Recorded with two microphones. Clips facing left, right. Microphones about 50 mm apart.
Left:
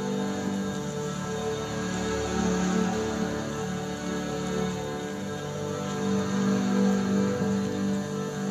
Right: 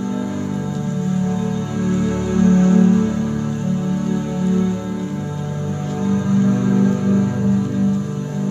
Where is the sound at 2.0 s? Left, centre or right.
Right.